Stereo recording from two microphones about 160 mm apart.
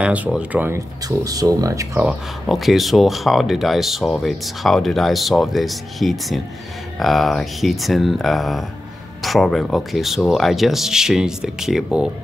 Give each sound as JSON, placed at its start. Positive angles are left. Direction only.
{"t": 0.0, "sound": "speech", "side_deg": -5}
{"t": 2.0, "sound": "speech", "side_deg": 0}